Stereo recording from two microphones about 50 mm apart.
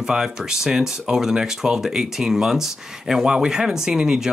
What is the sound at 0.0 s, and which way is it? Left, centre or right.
Speech, centre.